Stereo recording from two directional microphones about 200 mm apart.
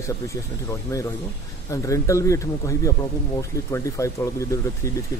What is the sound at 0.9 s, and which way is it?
Speech, 15° left (ahead or behind).